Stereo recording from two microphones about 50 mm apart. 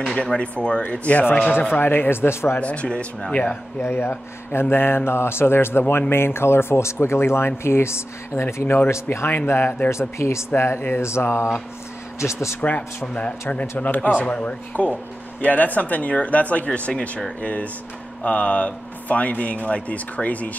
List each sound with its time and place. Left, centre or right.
0.2 s speech: centre
1.7 s speech: left
2.6 s speech: left
3.8 s speech: left
9.5 s speech: left
9.8 s speech: left
10.6 s speech: left
11.0 s speech: left
12.5 s speech: left